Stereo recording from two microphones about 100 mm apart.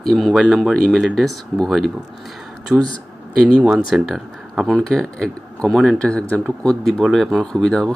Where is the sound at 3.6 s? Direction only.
5° right (ahead or behind).